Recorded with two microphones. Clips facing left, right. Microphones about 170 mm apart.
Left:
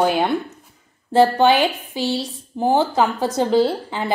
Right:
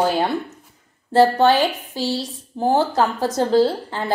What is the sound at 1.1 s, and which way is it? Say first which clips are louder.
Chopping: even; centre (ahead or behind).